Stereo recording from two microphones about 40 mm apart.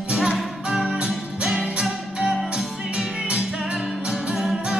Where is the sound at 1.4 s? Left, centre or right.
Right.